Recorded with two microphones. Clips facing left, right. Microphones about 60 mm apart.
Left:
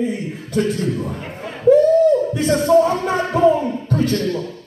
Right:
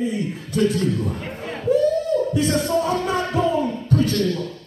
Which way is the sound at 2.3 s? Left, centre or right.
Left.